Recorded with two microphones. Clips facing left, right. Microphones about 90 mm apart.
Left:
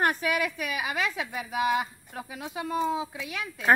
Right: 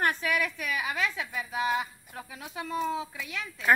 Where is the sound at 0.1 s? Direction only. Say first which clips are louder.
Left 2 dB; 15° left (ahead or behind).